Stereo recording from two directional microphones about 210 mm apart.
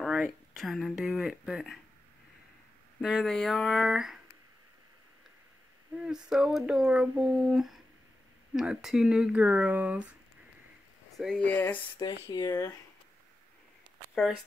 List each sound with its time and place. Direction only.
0.0 s speech: centre (ahead or behind)
3.0 s speech: centre (ahead or behind)
5.9 s speech: 5° right (ahead or behind)
11.1 s speech: 5° left (ahead or behind)
12.0 s speech: 20° left (ahead or behind)